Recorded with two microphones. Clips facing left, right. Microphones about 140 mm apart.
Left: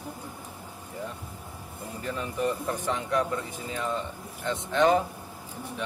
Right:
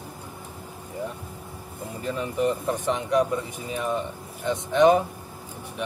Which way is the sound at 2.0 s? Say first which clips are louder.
Right 4 dB; 20° right (ahead or behind).